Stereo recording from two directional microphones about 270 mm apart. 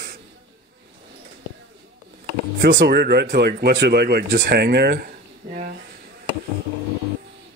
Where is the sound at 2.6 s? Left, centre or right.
Right.